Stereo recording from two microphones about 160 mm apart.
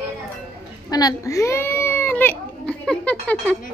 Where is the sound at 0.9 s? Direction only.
20° left (ahead or behind).